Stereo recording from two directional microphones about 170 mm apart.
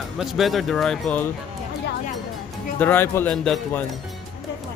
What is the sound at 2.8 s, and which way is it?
Speech, 10° left (ahead or behind).